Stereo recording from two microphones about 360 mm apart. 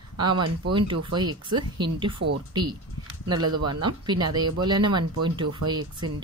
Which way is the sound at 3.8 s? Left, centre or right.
Centre.